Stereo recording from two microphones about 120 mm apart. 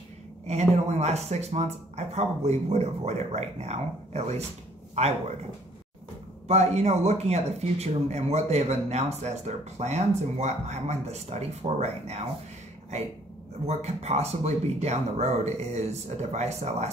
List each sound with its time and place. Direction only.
0.5 s speech: 65° right (ahead or behind)
6.4 s speech: 65° right (ahead or behind)
13.7 s speech: 65° right (ahead or behind)